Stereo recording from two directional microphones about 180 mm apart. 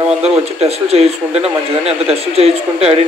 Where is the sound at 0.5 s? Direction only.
35° right (ahead or behind).